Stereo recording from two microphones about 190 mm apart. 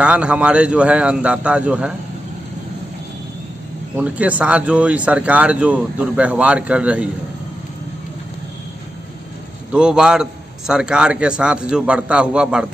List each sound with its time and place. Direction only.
0.0 s speech: 5° right (ahead or behind)
3.9 s speech: 5° right (ahead or behind)
9.7 s speech: 5° right (ahead or behind)